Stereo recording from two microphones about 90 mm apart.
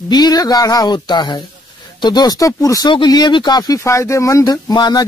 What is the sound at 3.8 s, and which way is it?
Speech, 35° left (ahead or behind).